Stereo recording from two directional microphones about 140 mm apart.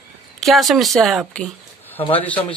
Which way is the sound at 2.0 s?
40° left (ahead or behind).